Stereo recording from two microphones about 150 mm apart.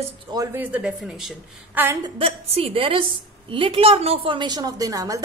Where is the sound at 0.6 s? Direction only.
10° right (ahead or behind).